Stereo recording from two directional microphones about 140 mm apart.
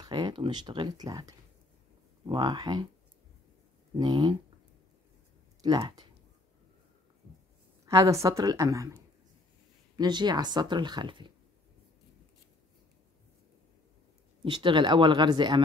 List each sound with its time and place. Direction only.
0.0 s speech: 30° right (ahead or behind)
3.9 s a woman's voice: 30° right (ahead or behind)
5.6 s a woman's voice: 30° right (ahead or behind)
7.8 s a woman's voice: 20° right (ahead or behind)
14.4 s speech: 35° right (ahead or behind)